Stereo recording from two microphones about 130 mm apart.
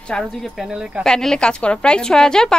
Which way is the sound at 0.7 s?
5° right (ahead or behind).